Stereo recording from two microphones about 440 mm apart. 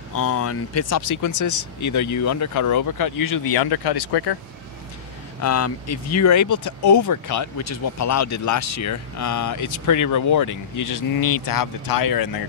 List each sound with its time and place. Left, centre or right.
0.3 s speech: left
5.4 s speech: left